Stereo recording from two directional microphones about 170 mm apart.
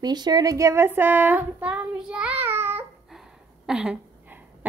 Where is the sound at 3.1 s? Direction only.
5° right (ahead or behind).